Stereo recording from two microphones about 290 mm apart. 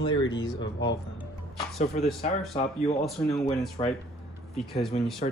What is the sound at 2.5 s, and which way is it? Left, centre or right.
Speech, left.